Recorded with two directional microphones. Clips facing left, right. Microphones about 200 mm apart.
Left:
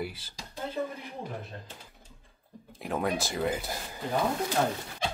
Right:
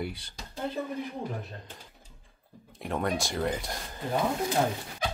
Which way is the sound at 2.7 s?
Centre (ahead or behind).